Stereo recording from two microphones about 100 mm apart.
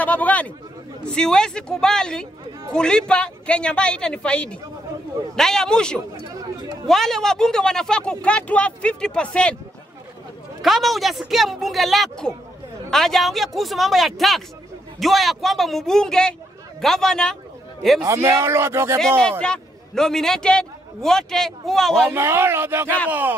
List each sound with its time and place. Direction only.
0.0 s speech: 15° left (ahead or behind)
6.2 s a sound: 35° right (ahead or behind)
6.9 s speech: 5° left (ahead or behind)
10.6 s a man's voice: centre (ahead or behind)
18.0 s speech: 30° right (ahead or behind)
19.4 s a man's voice: 5° left (ahead or behind)
22.1 s speech: 25° right (ahead or behind)